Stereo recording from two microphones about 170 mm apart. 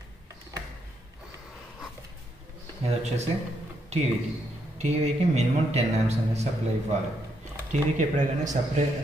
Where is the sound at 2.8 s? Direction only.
40° right (ahead or behind).